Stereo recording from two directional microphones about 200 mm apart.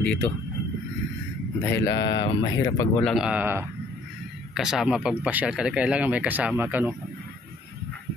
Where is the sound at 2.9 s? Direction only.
Centre (ahead or behind).